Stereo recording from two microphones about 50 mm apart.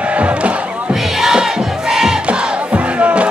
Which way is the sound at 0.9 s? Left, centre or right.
Centre.